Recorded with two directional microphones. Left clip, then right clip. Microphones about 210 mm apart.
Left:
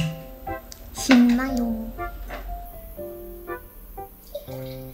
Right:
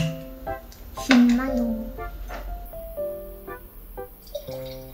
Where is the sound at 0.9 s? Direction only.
55° left (ahead or behind).